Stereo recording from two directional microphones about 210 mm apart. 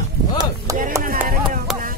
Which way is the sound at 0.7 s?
15° right (ahead or behind).